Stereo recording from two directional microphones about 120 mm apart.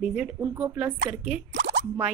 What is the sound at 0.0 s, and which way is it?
Speech, 10° right (ahead or behind).